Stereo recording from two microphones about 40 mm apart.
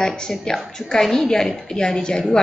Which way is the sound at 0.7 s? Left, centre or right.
Centre.